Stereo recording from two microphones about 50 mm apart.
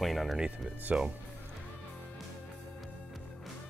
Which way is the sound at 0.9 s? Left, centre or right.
Right.